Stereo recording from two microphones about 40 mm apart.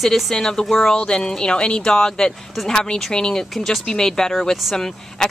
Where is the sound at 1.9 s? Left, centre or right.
Centre.